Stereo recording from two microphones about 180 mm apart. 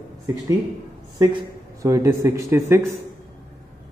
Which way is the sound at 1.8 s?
15° right (ahead or behind).